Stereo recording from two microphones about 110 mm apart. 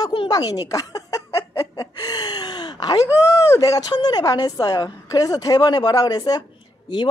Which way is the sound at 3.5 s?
30° left (ahead or behind).